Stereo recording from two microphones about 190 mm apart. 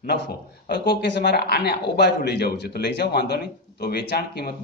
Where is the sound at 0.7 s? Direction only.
60° left (ahead or behind).